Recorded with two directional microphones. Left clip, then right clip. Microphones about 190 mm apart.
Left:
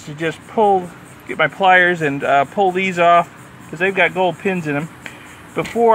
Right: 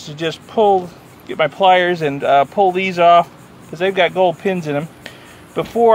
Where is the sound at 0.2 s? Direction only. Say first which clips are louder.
Right 1 dB; 15° right (ahead or behind).